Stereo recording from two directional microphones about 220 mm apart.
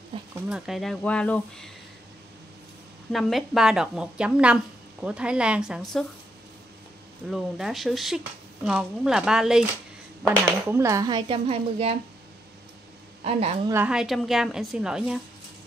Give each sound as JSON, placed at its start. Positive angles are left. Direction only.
{"t": 0.1, "sound": "speech", "side_deg": -25}
{"t": 0.5, "sound": "a woman's voice", "side_deg": 0}
{"t": 3.1, "sound": "a woman's voice", "side_deg": 0}
{"t": 7.2, "sound": "a woman's voice", "side_deg": 0}
{"t": 13.2, "sound": "speech", "side_deg": -25}
{"t": 13.7, "sound": "a woman's voice", "side_deg": -5}